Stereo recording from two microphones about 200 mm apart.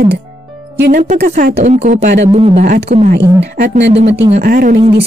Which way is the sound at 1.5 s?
35° right (ahead or behind).